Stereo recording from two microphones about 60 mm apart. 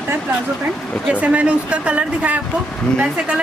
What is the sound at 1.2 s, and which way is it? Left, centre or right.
Speech, right.